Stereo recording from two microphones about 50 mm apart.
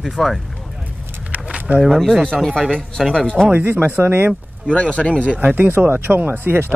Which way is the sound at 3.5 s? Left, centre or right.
Right.